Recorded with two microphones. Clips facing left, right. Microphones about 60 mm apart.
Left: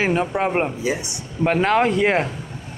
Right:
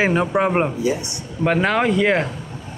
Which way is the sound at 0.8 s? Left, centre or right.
Left.